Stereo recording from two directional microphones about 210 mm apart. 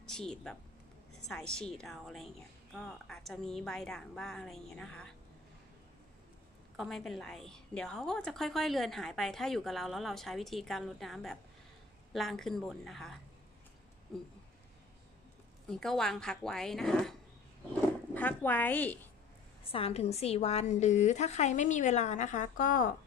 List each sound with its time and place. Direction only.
0.0 s a woman's voice: 5° left (ahead or behind)
6.8 s a woman's voice: centre (ahead or behind)
15.7 s a woman's voice: centre (ahead or behind)
19.6 s a woman's voice: 25° left (ahead or behind)